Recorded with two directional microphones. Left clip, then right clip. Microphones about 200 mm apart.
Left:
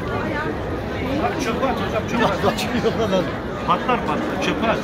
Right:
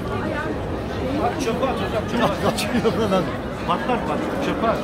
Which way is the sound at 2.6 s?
35° right (ahead or behind).